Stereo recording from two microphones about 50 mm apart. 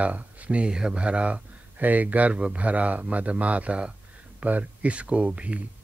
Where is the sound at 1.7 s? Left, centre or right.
Right.